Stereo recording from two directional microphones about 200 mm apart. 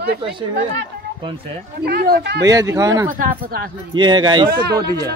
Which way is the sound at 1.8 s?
50° right (ahead or behind).